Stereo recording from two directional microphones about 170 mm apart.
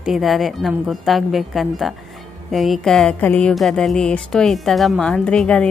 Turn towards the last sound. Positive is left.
turn(degrees=5)  # may be behind; listen again after turning